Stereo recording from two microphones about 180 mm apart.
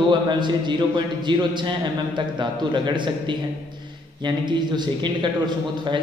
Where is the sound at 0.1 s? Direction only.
25° right (ahead or behind).